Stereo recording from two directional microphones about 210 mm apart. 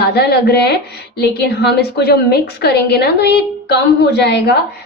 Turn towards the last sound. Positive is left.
turn(degrees=55)  # may be behind; listen again after turning